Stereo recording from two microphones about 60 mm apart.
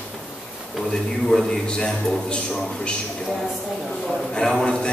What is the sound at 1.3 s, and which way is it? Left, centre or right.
A man's voice, centre.